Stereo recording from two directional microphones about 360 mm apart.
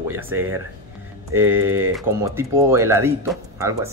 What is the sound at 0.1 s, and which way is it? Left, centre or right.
Speech, centre.